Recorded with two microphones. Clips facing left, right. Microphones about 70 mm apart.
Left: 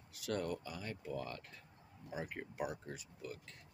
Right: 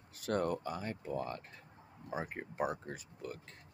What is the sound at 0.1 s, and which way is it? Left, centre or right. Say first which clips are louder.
Speech: right 5 dB; right.